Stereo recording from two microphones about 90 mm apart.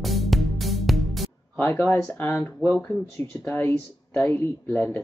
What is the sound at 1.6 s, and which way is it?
Speech, 25° left (ahead or behind).